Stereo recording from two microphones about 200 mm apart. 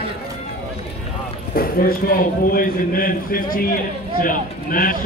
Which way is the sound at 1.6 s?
45° left (ahead or behind).